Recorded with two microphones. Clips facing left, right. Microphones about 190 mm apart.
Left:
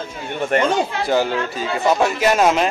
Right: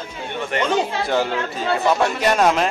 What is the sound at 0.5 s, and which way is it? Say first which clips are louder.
Speech: left 5 dB; 50° left (ahead or behind).